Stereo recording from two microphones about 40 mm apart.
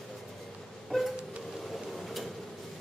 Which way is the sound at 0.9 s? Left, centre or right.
Centre.